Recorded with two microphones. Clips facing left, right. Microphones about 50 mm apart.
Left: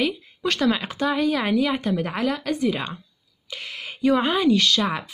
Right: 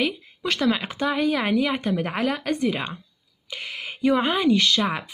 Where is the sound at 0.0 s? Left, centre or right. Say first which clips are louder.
Left 1 dB; centre.